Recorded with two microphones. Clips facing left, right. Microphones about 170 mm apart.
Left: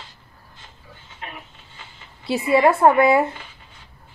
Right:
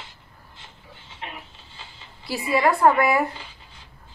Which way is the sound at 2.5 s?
20° left (ahead or behind).